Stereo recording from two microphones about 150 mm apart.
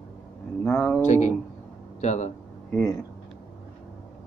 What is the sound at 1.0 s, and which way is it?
Speech, 55° left (ahead or behind).